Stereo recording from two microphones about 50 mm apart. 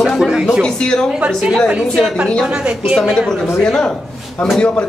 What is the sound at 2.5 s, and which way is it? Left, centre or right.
Speech, right.